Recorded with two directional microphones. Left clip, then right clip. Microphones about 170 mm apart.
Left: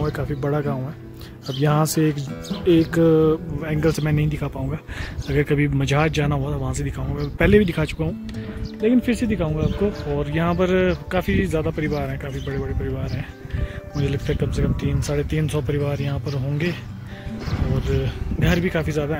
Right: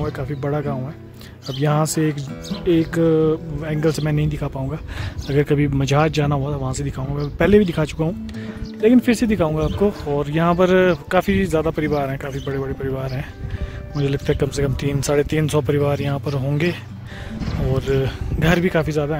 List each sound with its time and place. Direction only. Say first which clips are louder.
0.0 s speech: even; centre (ahead or behind)
5.3 s speech: right 2 dB; 25° right (ahead or behind)
8.8 s speech: right 4 dB; 45° right (ahead or behind)
10.1 s a man's voice: right 4 dB; 30° right (ahead or behind)
13.9 s a man's voice: right 4 dB; 30° right (ahead or behind)
14.2 s speech: right 5 dB; 50° right (ahead or behind)
17.7 s a man's voice: right 6 dB; 50° right (ahead or behind)